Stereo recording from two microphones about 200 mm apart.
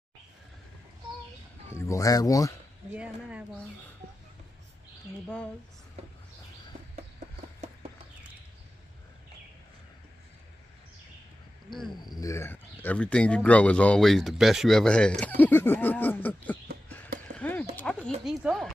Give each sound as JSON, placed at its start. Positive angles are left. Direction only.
{"t": 1.7, "sound": "speech", "side_deg": 15}
{"t": 2.9, "sound": "speech", "side_deg": -5}
{"t": 11.9, "sound": "speech", "side_deg": 20}
{"t": 17.3, "sound": "clip-clop", "side_deg": 5}
{"t": 17.7, "sound": "speech", "side_deg": 5}